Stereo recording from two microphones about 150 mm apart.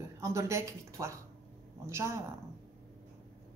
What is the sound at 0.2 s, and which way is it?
A woman's voice, 20° right (ahead or behind).